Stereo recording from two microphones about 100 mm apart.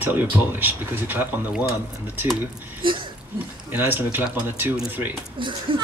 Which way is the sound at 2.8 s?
55° right (ahead or behind).